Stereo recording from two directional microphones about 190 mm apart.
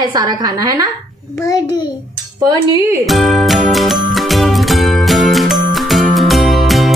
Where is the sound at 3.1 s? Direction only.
Centre (ahead or behind).